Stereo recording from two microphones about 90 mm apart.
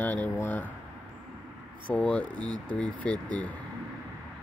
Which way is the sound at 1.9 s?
15° left (ahead or behind).